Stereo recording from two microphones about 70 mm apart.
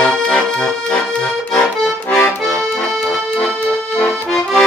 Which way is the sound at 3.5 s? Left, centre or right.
Centre.